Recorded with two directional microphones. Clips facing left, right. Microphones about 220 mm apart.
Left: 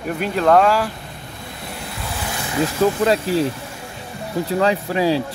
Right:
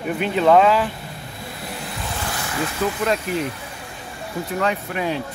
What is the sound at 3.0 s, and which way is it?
Speech, 30° left (ahead or behind).